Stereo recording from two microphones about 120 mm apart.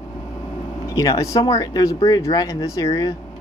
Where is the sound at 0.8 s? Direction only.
30° left (ahead or behind).